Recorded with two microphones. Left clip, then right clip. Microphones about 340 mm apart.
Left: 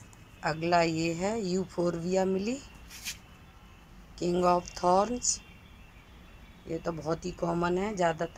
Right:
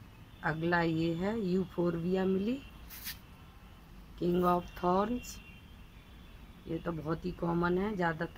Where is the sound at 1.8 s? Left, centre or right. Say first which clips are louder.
Left 6 dB; centre.